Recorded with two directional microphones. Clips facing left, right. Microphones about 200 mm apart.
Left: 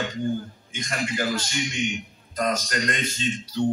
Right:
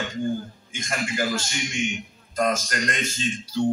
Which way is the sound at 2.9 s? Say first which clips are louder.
Left 1 dB; 45° right (ahead or behind).